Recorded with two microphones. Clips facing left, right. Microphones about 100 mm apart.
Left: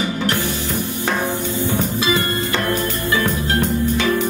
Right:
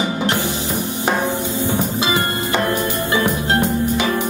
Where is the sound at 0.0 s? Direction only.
20° right (ahead or behind).